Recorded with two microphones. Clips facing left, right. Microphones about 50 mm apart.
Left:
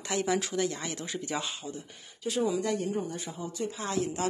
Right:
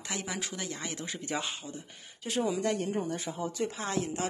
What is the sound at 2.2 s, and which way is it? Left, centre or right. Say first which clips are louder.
Speech: left 2 dB; right.